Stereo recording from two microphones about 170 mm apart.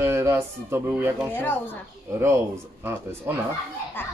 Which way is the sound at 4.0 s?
10° left (ahead or behind).